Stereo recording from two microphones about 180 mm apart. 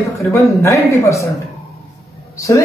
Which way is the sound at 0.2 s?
15° left (ahead or behind).